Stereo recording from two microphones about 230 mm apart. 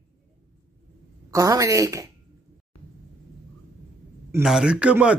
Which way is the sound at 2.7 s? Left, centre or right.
Left.